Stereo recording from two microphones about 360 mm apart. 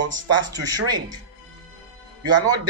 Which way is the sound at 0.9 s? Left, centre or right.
Right.